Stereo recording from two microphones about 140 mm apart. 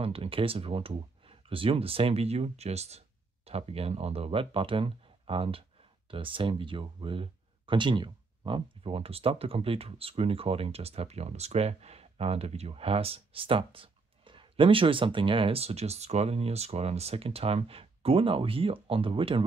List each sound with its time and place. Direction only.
0.0 s speech: 45° right (ahead or behind)